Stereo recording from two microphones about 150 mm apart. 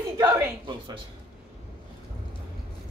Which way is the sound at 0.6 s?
30° right (ahead or behind).